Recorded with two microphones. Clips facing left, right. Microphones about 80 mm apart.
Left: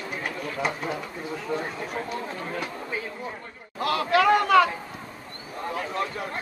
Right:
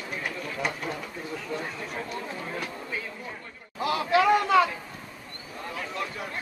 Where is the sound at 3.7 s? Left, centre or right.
Centre.